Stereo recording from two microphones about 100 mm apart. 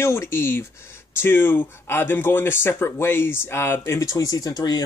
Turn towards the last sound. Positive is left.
turn(degrees=40)  # may be behind; listen again after turning